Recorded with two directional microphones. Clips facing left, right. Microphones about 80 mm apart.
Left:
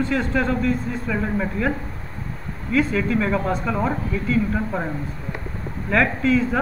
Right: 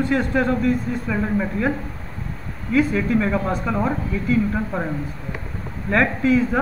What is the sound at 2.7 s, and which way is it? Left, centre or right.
Speech, centre.